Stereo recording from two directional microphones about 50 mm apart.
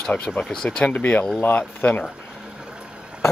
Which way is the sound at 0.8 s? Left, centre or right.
Left.